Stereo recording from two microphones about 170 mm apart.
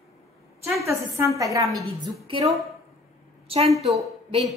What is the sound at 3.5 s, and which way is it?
Speech, 35° right (ahead or behind).